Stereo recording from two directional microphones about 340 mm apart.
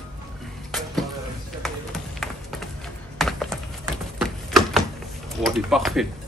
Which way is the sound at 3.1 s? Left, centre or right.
Centre.